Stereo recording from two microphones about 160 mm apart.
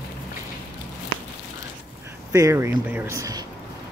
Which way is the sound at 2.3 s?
20° right (ahead or behind).